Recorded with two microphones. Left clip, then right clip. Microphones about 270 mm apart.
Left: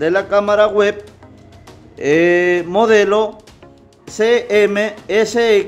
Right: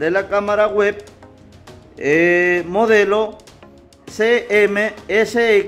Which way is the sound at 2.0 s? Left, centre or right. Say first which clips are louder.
Left 1 dB; centre.